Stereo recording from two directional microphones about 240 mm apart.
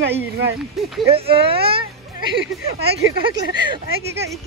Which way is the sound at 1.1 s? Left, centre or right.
Right.